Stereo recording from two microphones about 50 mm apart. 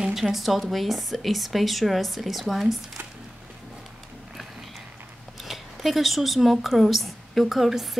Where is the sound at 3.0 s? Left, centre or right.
Right.